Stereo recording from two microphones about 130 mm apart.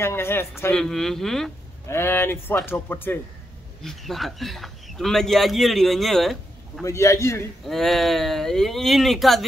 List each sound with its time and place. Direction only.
0.0 s speech: 20° left (ahead or behind)
0.7 s a man's voice: 5° left (ahead or behind)
1.9 s speech: 20° left (ahead or behind)
3.8 s a man's voice: centre (ahead or behind)
6.8 s speech: 25° left (ahead or behind)
7.6 s a man's voice: centre (ahead or behind)